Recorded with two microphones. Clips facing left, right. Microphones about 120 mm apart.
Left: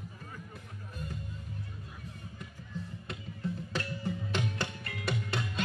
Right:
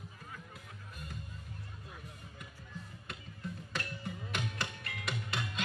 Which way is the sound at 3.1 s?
30° left (ahead or behind).